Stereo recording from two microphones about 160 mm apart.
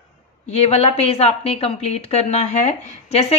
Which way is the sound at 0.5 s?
40° left (ahead or behind).